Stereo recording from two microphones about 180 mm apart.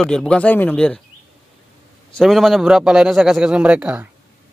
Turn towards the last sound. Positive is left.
turn(degrees=-5)  # may be behind; listen again after turning